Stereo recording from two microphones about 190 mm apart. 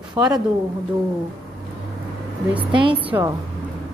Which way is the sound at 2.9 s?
10° right (ahead or behind).